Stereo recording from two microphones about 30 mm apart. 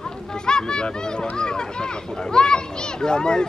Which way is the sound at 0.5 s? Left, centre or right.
Left.